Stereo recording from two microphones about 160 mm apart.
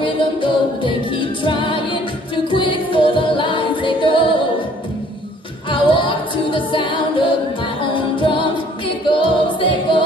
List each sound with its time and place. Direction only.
0.0 s a capella: 30° left (ahead or behind)
5.7 s a capella: 30° left (ahead or behind)
9.1 s music: 30° left (ahead or behind)